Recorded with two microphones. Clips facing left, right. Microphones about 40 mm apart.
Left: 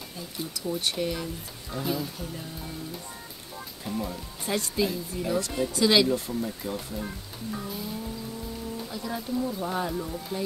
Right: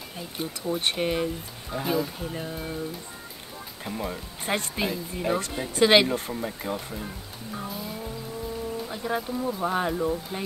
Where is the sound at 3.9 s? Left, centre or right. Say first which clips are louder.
Even; right.